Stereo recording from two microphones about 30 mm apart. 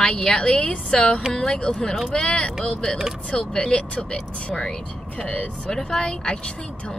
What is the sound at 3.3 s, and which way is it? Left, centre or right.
Speech, left.